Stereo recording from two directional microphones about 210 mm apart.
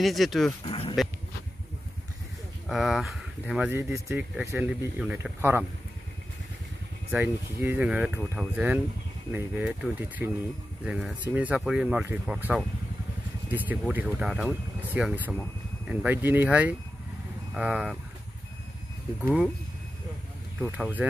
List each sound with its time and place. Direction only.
0.0 s speech: centre (ahead or behind)
0.7 s a sound: 25° left (ahead or behind)
2.7 s speech: centre (ahead or behind)
7.1 s speech: 10° right (ahead or behind)
20.7 s speech: 5° right (ahead or behind)